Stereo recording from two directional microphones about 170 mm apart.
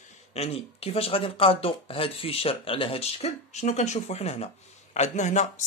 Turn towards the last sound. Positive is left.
turn(degrees=45)  # may be behind; listen again after turning